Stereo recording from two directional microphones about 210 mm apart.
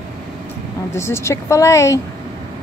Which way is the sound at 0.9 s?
10° left (ahead or behind).